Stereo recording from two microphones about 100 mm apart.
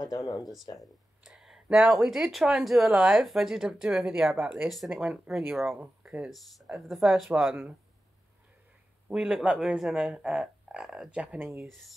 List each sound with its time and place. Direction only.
0.0 s speech: 40° left (ahead or behind)
0.7 s speech: 5° right (ahead or behind)
6.3 s speech: centre (ahead or behind)
9.1 s speech: 5° right (ahead or behind)
11.4 s speech: 25° right (ahead or behind)